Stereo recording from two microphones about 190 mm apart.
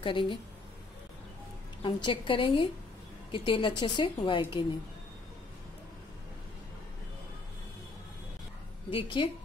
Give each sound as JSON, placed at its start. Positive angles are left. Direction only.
{"t": 0.0, "sound": "a woman's voice", "side_deg": 25}
{"t": 1.8, "sound": "a woman's voice", "side_deg": 25}
{"t": 8.9, "sound": "a woman's voice", "side_deg": 25}